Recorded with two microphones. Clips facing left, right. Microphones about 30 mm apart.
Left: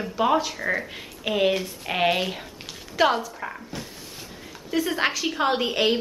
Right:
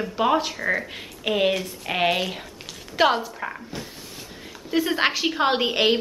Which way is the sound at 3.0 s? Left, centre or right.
Centre.